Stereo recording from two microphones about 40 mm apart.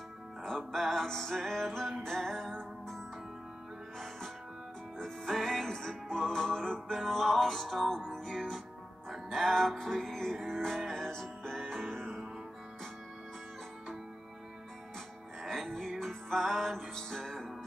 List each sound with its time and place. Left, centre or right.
0.4 s music: centre
4.9 s music: centre
15.4 s music: centre